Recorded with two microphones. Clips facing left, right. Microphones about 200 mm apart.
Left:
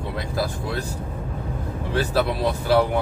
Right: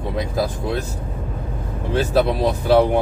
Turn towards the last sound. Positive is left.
turn(degrees=-20)  # may be behind; listen again after turning